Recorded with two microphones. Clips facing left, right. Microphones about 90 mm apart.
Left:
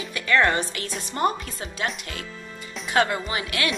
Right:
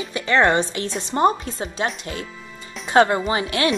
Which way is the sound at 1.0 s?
25° right (ahead or behind).